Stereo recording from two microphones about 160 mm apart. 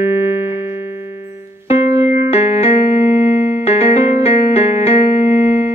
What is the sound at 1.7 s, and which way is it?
Keyboard, 40° left (ahead or behind).